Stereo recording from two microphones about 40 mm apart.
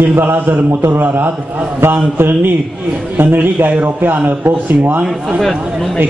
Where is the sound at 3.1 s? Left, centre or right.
Right.